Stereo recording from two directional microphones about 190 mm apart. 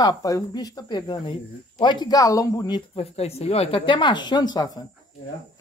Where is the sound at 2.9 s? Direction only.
35° left (ahead or behind).